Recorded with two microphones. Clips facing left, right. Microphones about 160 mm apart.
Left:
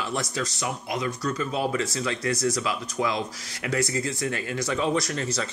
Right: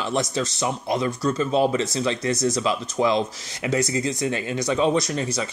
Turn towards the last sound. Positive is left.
turn(degrees=-15)  # may be behind; listen again after turning